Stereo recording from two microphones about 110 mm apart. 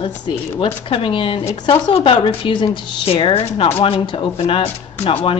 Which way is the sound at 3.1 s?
55° left (ahead or behind).